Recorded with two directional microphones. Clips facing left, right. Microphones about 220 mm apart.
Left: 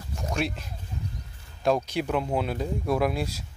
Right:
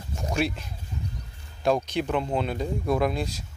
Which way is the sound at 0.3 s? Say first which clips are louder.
Right 3 dB; centre (ahead or behind).